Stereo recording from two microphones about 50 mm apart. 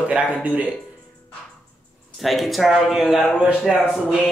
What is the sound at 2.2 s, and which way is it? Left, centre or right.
A man's voice, centre.